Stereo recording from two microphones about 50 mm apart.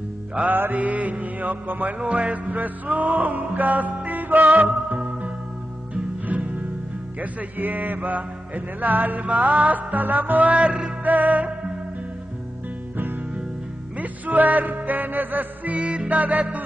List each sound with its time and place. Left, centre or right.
0.5 s music: right
13.9 s music: right